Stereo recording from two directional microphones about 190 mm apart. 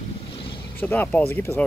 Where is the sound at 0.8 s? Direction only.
10° left (ahead or behind).